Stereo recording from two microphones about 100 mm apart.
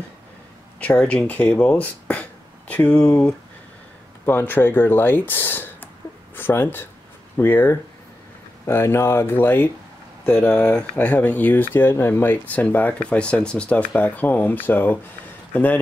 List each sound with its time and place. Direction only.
0.7 s speech: 10° left (ahead or behind)
4.3 s speech: 20° left (ahead or behind)